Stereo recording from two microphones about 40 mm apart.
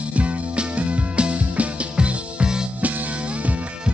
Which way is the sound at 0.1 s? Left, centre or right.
Right.